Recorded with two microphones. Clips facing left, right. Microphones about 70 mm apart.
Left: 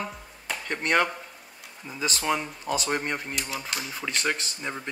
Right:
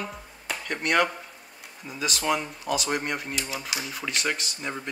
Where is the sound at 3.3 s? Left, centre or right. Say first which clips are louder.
Right 1 dB; centre.